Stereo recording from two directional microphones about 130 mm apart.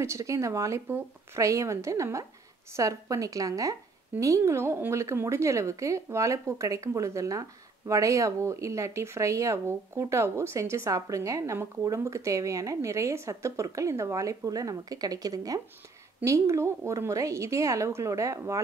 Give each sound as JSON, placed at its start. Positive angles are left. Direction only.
{"t": 0.0, "sound": "speech", "side_deg": -25}